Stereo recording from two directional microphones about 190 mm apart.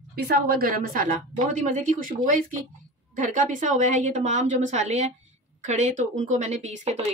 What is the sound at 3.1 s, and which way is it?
Speech, 45° right (ahead or behind).